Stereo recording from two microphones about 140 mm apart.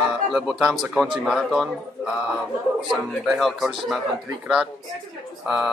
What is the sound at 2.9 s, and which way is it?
Speech, centre (ahead or behind).